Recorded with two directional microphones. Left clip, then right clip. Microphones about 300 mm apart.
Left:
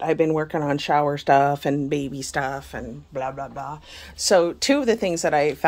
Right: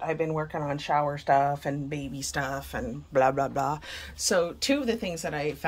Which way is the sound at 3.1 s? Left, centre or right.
Centre.